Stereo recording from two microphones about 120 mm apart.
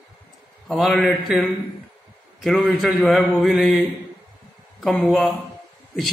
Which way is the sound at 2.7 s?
5° right (ahead or behind).